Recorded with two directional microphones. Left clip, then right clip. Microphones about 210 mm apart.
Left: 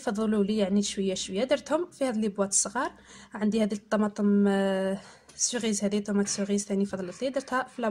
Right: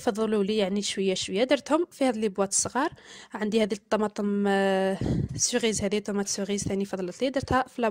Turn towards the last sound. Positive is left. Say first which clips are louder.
# right 3 dB
turn(degrees=-40)  # may be behind; listen again after turning